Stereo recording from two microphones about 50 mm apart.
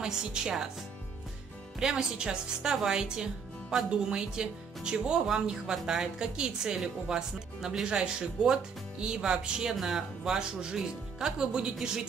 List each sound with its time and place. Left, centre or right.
0.0 s speech: centre
1.8 s speech: centre